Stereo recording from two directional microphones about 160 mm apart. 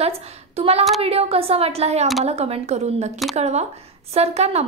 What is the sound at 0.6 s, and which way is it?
A woman's voice, 40° right (ahead or behind).